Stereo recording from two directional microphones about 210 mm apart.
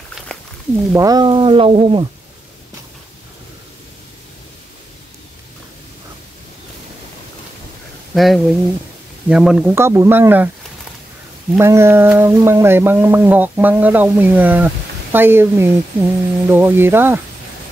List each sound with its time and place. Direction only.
0.9 s speech: 20° right (ahead or behind)
8.1 s speech: centre (ahead or behind)
11.5 s speech: 10° right (ahead or behind)